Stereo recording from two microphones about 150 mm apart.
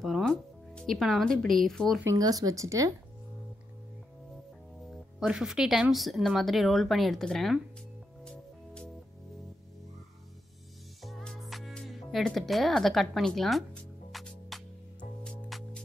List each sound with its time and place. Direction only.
0.0 s speech: centre (ahead or behind)
2.0 s speech: 25° right (ahead or behind)
4.9 s speech: 5° right (ahead or behind)
8.2 s music: 5° left (ahead or behind)
11.0 s music: centre (ahead or behind)